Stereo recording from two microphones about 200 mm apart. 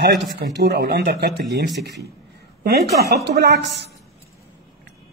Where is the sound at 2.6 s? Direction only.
55° right (ahead or behind).